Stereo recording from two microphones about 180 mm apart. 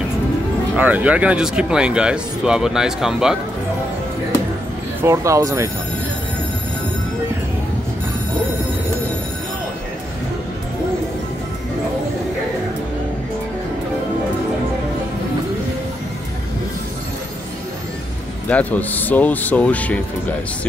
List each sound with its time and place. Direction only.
0.7 s speech: 10° right (ahead or behind)
5.0 s speech: 15° right (ahead or behind)
18.5 s speech: 10° left (ahead or behind)